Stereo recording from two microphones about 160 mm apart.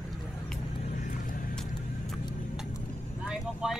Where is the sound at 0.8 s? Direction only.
60° left (ahead or behind).